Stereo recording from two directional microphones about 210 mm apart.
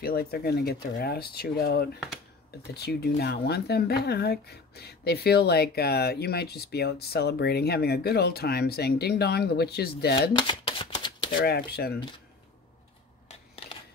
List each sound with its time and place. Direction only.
0.0 s speech: 45° left (ahead or behind)
10.3 s shuffling cards: 25° left (ahead or behind)
11.4 s speech: 50° left (ahead or behind)